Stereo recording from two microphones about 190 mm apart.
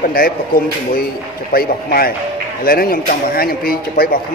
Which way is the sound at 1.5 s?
50° left (ahead or behind).